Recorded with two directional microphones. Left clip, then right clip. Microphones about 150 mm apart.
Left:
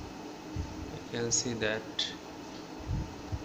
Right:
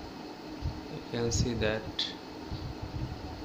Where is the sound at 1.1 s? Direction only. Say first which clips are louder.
Even; 20° right (ahead or behind).